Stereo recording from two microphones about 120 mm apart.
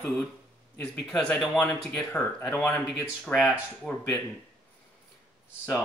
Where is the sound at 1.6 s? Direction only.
20° left (ahead or behind).